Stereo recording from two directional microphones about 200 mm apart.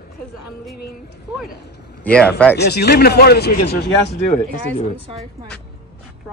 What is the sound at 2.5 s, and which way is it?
Speech, 55° left (ahead or behind).